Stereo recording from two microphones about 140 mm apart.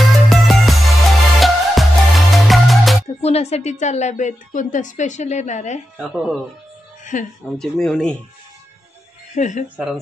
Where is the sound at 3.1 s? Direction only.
50° left (ahead or behind).